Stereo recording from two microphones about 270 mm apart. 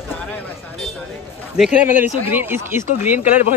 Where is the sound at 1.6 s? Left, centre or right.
Centre.